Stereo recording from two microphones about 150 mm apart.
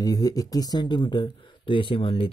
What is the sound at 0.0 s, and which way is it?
Speech, 25° left (ahead or behind).